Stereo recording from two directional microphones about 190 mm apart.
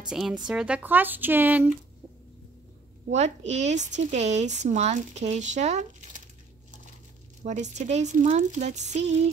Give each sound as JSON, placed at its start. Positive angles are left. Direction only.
{"t": 0.1, "sound": "a woman's voice", "side_deg": -5}
{"t": 3.1, "sound": "speech", "side_deg": -35}
{"t": 7.4, "sound": "speech", "side_deg": -40}